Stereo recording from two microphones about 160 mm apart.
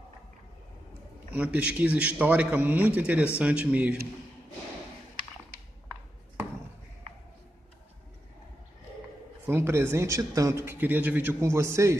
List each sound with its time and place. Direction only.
1.3 s a man's voice: 10° right (ahead or behind)
9.5 s a man's voice: 15° right (ahead or behind)